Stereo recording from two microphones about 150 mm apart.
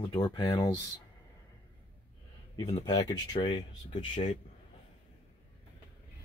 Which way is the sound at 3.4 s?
45° left (ahead or behind).